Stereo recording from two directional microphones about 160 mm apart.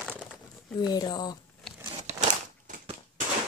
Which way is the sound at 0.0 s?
Centre (ahead or behind).